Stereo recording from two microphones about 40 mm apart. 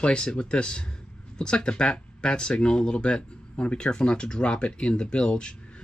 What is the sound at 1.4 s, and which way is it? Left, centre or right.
Speech, left.